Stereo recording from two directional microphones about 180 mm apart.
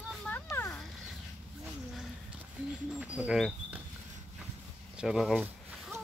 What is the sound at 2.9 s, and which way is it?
Speech, 5° right (ahead or behind).